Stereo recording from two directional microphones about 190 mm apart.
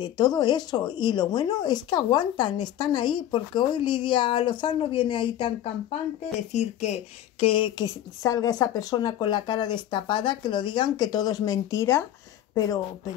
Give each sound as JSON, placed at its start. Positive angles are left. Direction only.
{"t": 0.0, "sound": "speech", "side_deg": 25}